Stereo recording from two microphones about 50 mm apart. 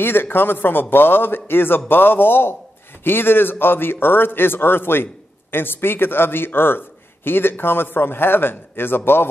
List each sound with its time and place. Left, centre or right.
0.0 s a man's voice: left